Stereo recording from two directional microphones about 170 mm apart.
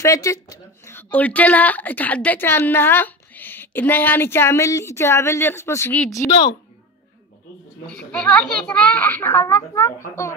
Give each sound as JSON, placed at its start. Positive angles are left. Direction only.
{"t": 0.0, "sound": "speech", "side_deg": 20}
{"t": 6.2, "sound": "a woman's voice", "side_deg": 30}
{"t": 7.9, "sound": "speech", "side_deg": 5}